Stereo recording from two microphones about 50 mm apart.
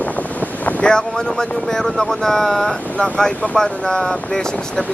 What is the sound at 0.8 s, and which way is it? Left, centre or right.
Speech, centre.